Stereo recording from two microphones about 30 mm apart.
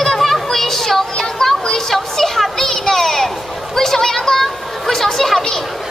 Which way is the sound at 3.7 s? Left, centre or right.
Centre.